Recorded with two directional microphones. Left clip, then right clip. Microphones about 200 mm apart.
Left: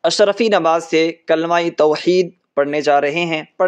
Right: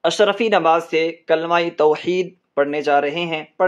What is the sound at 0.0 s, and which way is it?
Speech, 25° left (ahead or behind).